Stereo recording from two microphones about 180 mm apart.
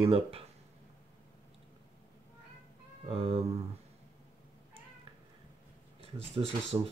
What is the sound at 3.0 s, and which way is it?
Speech, 35° right (ahead or behind).